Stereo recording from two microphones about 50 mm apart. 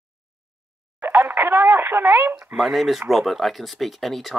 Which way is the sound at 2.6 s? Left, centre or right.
Centre.